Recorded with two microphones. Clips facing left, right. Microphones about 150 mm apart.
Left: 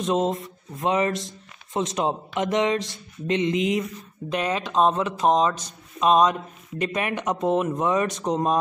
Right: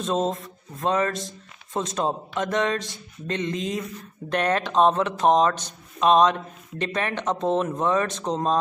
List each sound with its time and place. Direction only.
0.0 s speech: 20° left (ahead or behind)
4.3 s speech: 5° left (ahead or behind)